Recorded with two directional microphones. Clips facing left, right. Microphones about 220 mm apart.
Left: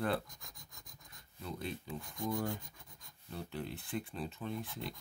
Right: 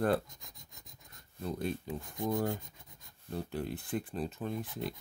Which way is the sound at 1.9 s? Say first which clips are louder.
Right 4 dB; 20° right (ahead or behind).